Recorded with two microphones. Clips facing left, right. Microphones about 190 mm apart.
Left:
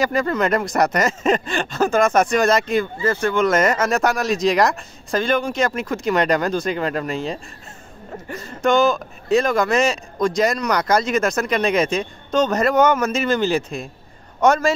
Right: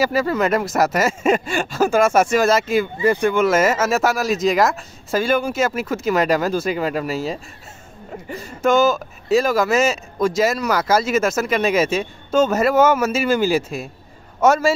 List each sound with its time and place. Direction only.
0.0 s speech: 5° right (ahead or behind)